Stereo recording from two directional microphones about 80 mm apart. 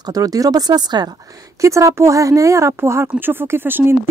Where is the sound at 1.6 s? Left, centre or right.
Right.